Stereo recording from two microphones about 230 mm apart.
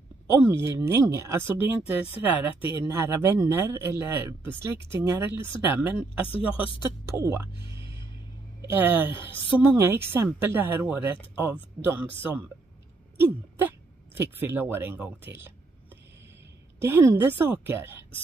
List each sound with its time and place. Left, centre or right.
0.6 s speech: centre
9.1 s a woman's voice: left
9.6 s speech: centre
16.8 s speech: centre